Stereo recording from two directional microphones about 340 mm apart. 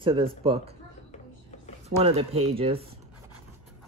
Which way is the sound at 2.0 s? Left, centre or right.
Centre.